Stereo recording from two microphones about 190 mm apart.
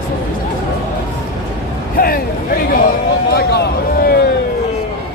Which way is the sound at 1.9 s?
50° left (ahead or behind).